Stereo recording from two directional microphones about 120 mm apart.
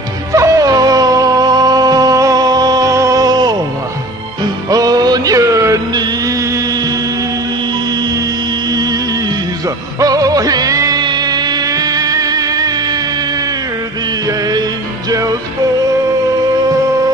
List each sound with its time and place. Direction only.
0.3 s music: 30° right (ahead or behind)
4.6 s music: 30° right (ahead or behind)
9.9 s music: 30° right (ahead or behind)